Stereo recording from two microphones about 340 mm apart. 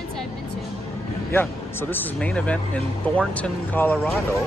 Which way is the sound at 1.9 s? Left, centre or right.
Centre.